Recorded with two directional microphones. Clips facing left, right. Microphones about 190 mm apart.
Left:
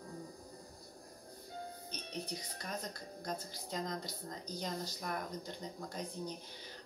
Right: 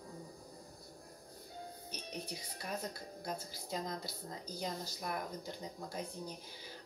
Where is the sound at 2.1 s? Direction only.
10° right (ahead or behind).